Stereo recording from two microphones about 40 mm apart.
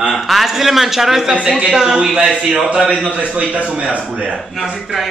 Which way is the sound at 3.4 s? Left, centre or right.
Right.